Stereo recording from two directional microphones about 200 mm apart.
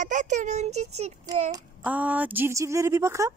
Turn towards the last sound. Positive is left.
turn(degrees=-15)  # may be behind; listen again after turning